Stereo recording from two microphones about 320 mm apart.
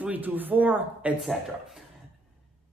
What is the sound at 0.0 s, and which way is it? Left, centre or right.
A woman's voice, centre.